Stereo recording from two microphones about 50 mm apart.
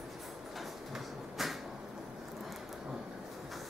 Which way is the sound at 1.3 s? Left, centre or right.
Centre.